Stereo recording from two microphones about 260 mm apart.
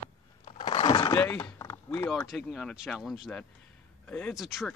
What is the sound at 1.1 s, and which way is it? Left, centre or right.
Speech, centre.